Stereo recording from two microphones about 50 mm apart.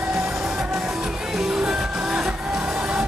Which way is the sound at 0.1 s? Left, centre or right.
Centre.